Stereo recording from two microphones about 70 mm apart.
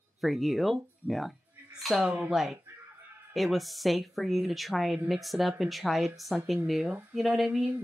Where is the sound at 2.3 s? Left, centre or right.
Centre.